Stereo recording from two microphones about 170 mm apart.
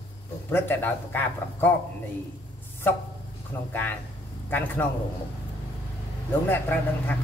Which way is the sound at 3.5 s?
15° left (ahead or behind).